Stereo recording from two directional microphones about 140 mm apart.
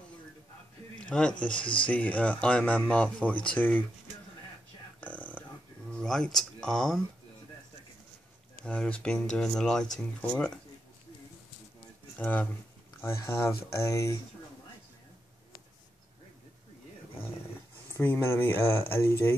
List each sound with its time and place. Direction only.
0.9 s a sound: 5° left (ahead or behind)
1.4 s speech: 10° left (ahead or behind)
5.0 s a sound: 10° left (ahead or behind)
5.9 s speech: 5° left (ahead or behind)
8.6 s speech: 10° left (ahead or behind)
12.2 s speech: 15° left (ahead or behind)
17.9 s speech: 15° left (ahead or behind)